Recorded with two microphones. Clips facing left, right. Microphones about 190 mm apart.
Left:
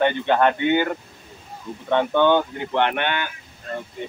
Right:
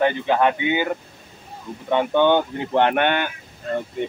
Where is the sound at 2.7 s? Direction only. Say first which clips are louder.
Right 4 dB; 45° right (ahead or behind).